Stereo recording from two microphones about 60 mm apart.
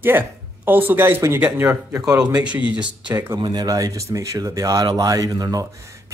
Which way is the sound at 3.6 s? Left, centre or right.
Right.